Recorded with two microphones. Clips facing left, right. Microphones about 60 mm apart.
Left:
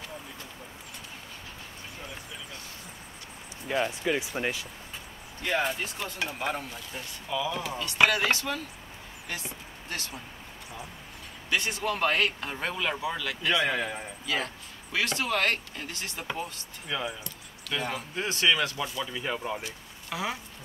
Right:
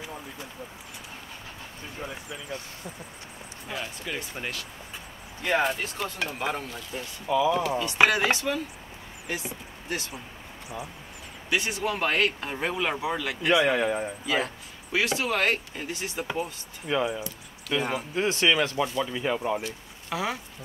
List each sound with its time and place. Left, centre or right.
3.6 s speech: left
4.1 s speech: centre
6.0 s speech: centre
7.2 s speech: right
11.5 s speech: centre
16.8 s speech: centre
19.0 s speech: centre